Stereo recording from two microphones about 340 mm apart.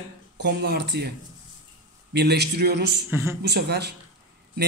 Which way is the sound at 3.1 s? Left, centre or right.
Centre.